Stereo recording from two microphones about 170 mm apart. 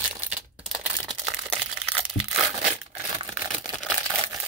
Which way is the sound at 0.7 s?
Centre (ahead or behind).